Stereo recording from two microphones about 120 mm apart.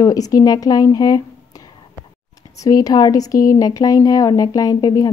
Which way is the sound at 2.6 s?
30° left (ahead or behind).